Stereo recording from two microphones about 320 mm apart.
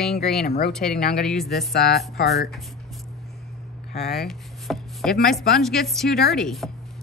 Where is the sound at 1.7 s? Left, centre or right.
Left.